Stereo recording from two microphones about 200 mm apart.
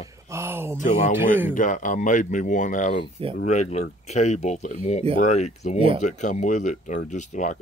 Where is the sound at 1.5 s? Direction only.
40° left (ahead or behind).